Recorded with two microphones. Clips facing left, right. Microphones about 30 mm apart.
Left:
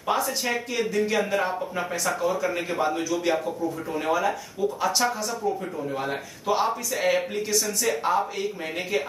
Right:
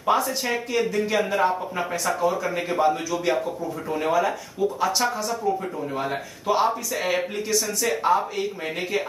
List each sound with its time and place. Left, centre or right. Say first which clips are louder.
0.0 s speech: right 3 dB; centre